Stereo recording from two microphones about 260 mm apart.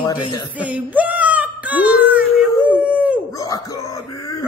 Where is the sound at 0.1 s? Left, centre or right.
Centre.